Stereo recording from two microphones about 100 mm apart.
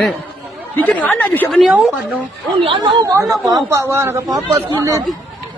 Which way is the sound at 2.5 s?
55° right (ahead or behind).